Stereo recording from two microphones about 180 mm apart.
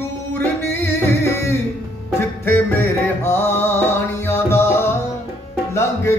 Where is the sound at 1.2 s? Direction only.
15° left (ahead or behind).